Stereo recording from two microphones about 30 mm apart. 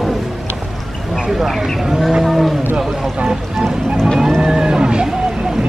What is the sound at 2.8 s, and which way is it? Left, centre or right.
Cattle, centre.